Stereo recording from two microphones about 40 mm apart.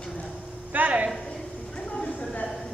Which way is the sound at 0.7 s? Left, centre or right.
Right.